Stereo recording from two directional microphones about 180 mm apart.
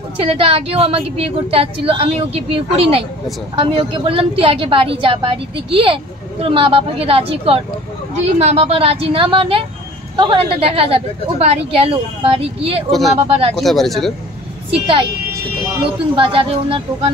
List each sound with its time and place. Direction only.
0.2 s a woman's voice: 30° right (ahead or behind)
13.6 s speech: centre (ahead or behind)
14.7 s a woman's voice: 30° right (ahead or behind)
16.2 s a woman's voice: 30° right (ahead or behind)